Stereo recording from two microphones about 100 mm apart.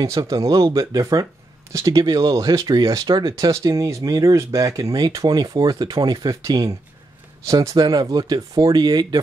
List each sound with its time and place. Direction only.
0.0 s speech: 35° right (ahead or behind)